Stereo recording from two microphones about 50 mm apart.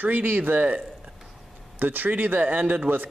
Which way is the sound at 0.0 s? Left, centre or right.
Right.